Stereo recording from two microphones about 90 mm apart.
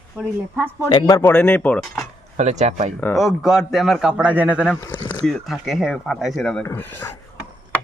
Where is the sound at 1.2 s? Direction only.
20° left (ahead or behind).